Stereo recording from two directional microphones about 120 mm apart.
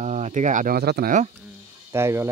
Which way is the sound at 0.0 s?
75° right (ahead or behind).